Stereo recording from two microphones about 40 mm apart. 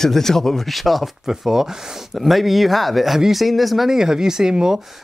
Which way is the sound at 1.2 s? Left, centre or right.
Centre.